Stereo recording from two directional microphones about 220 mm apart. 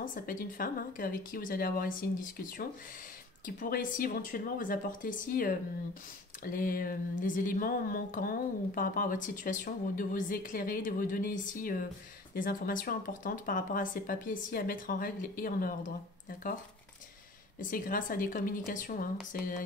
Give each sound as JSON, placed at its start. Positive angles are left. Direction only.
{"t": 0.0, "sound": "a woman's voice", "side_deg": 40}
{"t": 17.6, "sound": "a woman's voice", "side_deg": 40}